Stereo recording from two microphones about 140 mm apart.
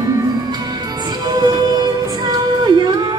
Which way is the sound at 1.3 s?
30° right (ahead or behind).